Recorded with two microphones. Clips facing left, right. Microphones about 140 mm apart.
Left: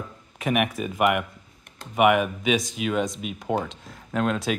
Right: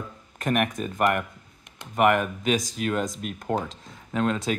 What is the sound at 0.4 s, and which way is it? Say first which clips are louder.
Speech: left 1 dB; 5° left (ahead or behind).